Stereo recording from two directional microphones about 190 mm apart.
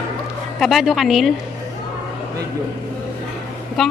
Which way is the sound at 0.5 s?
Centre (ahead or behind).